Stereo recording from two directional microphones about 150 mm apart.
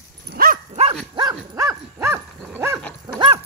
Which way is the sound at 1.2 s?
35° right (ahead or behind).